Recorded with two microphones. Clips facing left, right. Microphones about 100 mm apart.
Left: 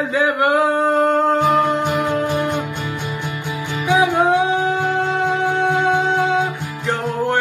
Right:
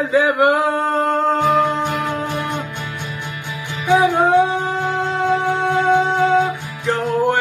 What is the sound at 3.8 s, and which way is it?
Music, centre (ahead or behind).